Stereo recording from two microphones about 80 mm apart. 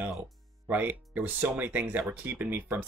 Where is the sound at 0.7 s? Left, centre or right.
Right.